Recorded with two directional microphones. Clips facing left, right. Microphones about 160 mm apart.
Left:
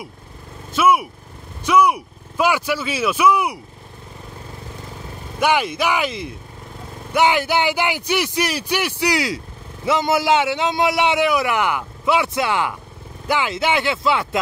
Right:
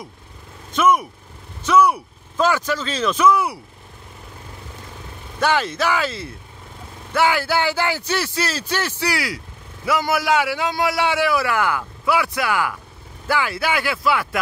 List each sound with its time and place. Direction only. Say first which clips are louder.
0.7 s speech: left 1 dB; 10° left (ahead or behind)
5.4 s a man's voice: left 1 dB; 15° left (ahead or behind)